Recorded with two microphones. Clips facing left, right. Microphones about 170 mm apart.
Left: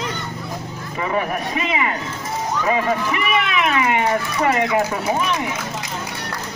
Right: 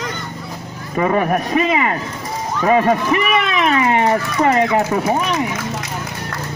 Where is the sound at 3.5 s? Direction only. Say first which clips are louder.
Right 3 dB; 35° right (ahead or behind).